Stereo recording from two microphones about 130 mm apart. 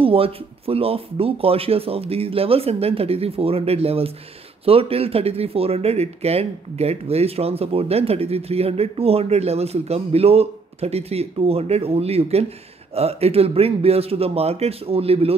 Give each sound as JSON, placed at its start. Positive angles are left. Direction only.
{"t": 0.0, "sound": "speech", "side_deg": -45}